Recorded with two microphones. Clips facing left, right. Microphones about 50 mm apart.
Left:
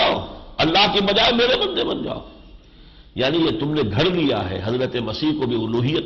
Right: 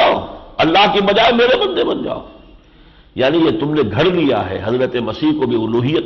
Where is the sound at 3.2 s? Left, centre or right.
Right.